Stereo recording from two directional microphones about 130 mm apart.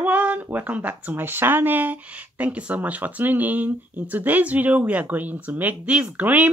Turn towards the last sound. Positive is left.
turn(degrees=-10)  # may be behind; listen again after turning